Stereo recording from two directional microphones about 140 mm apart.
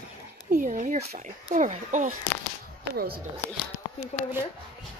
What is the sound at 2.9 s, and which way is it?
Speech, 90° right.